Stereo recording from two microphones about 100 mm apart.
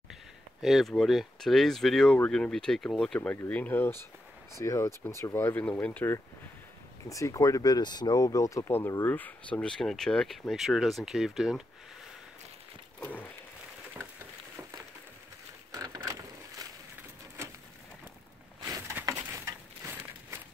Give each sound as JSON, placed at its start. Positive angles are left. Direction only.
{"t": 0.1, "sound": "speech", "side_deg": 0}
{"t": 3.2, "sound": "speech", "side_deg": 20}
{"t": 7.1, "sound": "speech", "side_deg": 35}
{"t": 13.0, "sound": "speech", "side_deg": 15}
{"t": 15.7, "sound": "a sound", "side_deg": -40}
{"t": 18.6, "sound": "a sound", "side_deg": -40}